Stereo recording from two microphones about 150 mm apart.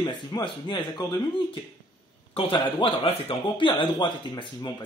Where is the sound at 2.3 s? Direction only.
35° left (ahead or behind).